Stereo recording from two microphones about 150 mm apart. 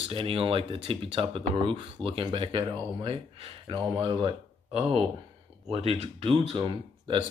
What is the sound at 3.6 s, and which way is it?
Speech, 30° right (ahead or behind).